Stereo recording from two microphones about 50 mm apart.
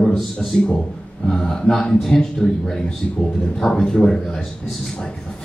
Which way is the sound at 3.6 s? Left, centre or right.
Centre.